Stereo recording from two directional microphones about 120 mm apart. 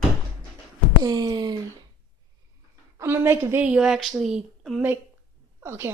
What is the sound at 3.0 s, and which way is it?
A woman's voice, 20° right (ahead or behind).